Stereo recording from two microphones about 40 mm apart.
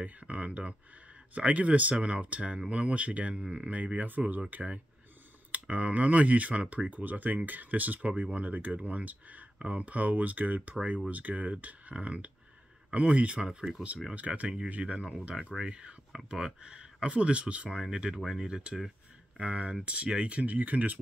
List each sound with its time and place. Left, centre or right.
0.0 s speech: right
14.1 s speech: right
17.8 s speech: centre
19.4 s speech: right